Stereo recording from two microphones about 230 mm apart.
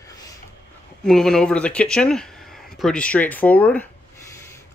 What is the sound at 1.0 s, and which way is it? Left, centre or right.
Speech, centre.